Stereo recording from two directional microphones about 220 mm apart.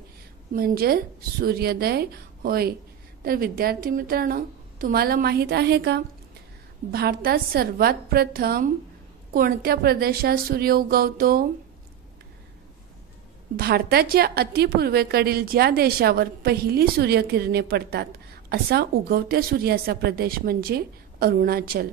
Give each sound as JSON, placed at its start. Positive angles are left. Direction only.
{"t": 0.6, "sound": "a woman's voice", "side_deg": -45}
{"t": 13.6, "sound": "a woman's voice", "side_deg": -45}